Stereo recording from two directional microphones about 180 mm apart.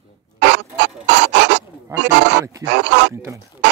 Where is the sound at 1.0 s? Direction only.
75° right (ahead or behind).